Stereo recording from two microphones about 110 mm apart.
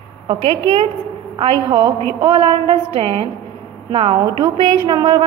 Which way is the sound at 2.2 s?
50° right (ahead or behind).